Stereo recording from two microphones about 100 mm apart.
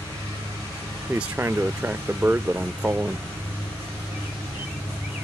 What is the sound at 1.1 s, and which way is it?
Speech, 20° right (ahead or behind).